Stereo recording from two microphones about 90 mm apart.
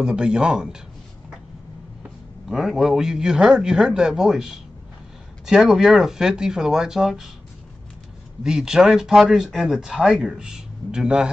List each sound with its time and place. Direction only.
0.0 s a man's voice: 10° right (ahead or behind)
2.4 s a man's voice: 5° right (ahead or behind)
8.5 s speech: 5° right (ahead or behind)